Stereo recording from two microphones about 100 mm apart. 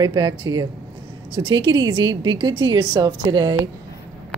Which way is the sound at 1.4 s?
55° right (ahead or behind).